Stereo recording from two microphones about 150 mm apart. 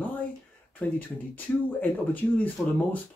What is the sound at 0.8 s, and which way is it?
Speech, 10° left (ahead or behind).